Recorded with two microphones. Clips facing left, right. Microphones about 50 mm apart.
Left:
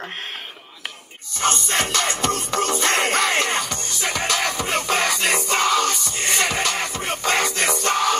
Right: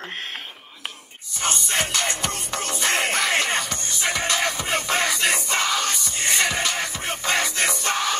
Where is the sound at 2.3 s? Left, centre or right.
Left.